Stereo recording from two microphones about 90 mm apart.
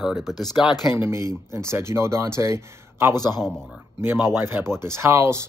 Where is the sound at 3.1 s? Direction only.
45° left (ahead or behind).